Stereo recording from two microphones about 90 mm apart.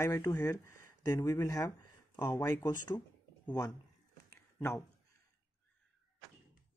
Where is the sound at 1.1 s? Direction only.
35° left (ahead or behind).